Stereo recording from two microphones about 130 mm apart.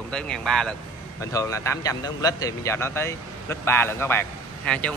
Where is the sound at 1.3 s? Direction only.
20° left (ahead or behind).